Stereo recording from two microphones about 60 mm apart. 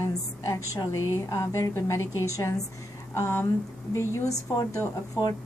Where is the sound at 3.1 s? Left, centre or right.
Left.